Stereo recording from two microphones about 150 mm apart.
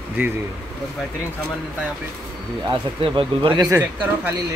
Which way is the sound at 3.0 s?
35° right (ahead or behind).